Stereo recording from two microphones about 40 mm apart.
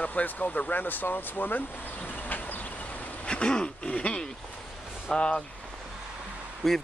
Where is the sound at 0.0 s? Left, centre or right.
Left.